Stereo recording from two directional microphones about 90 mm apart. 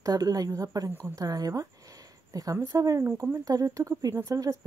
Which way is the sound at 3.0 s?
25° right (ahead or behind).